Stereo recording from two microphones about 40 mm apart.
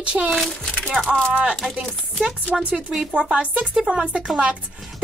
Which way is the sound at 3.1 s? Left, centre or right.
Right.